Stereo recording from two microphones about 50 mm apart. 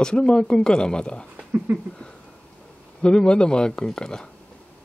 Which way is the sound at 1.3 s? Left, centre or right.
Right.